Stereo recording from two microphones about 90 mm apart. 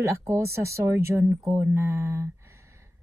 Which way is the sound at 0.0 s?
35° right (ahead or behind).